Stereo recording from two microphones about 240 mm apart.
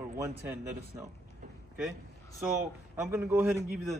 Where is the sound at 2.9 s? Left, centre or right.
Centre.